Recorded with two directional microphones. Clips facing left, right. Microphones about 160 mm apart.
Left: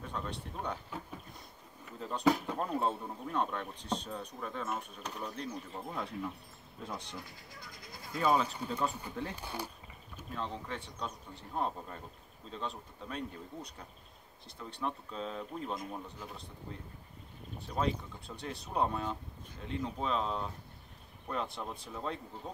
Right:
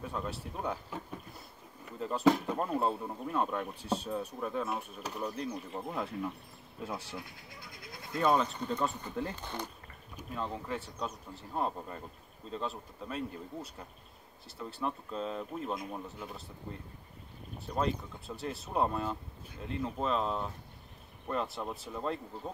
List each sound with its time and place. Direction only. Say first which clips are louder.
0.0 s speech: right 2 dB; 5° right (ahead or behind)
2.0 s speech: right 3 dB; centre (ahead or behind)
7.4 s speech: right 1 dB; 60° right (ahead or behind)
8.1 s speech: right 1 dB; 5° left (ahead or behind)
10.1 s speech: right 2 dB; 5° right (ahead or behind)
17.6 s speech: right 1 dB; centre (ahead or behind)